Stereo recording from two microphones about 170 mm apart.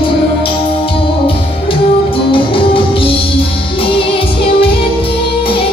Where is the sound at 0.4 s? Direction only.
30° left (ahead or behind).